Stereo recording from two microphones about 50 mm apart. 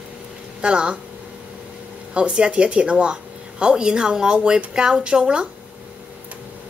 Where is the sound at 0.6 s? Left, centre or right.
Right.